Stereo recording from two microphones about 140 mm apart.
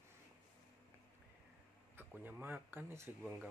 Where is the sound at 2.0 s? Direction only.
15° right (ahead or behind).